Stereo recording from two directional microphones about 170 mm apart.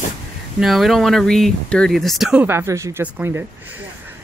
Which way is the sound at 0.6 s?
Centre (ahead or behind).